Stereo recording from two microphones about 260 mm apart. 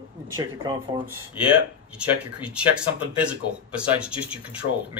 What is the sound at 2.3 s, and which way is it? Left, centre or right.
Speech, centre.